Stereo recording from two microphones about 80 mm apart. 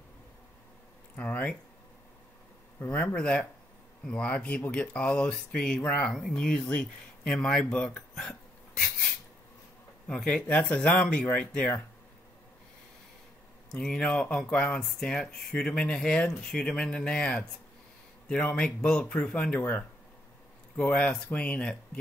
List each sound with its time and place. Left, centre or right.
1.1 s speech: centre
2.9 s speech: left
3.2 s speech: centre
10.0 s speech: centre
13.7 s speech: centre
20.7 s speech: centre